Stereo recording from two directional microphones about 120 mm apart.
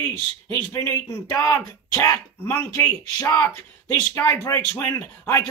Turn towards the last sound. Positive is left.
turn(degrees=25)  # may be behind; listen again after turning